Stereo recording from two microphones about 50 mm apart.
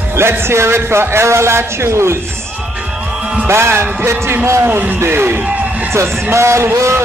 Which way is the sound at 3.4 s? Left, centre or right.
Right.